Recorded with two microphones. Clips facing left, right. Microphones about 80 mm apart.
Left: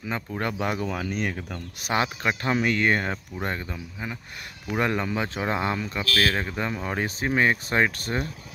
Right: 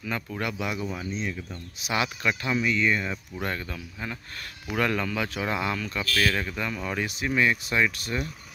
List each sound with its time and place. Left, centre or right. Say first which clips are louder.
0.0 s speech: left 2 dB; left
0.8 s speech: left 3 dB; left
2.0 s speech: left 2 dB; left
2.5 s speech: left 2 dB; left
3.3 s speech: left 1 dB; left